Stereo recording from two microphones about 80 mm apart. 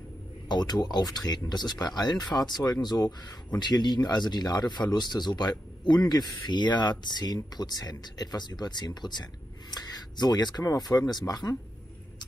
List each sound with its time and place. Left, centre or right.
0.5 s speech: left
10.6 s speech: left